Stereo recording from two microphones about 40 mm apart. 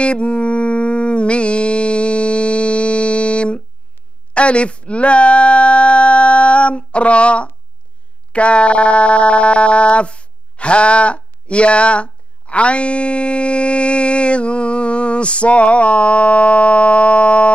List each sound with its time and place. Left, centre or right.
0.0 s music: left
4.3 s a sound: left
8.3 s speech: left